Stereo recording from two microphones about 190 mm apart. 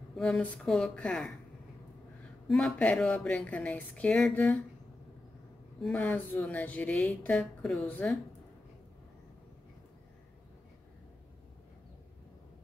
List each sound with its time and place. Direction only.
0.1 s speech: centre (ahead or behind)
2.4 s speech: 5° left (ahead or behind)
5.8 s speech: 5° left (ahead or behind)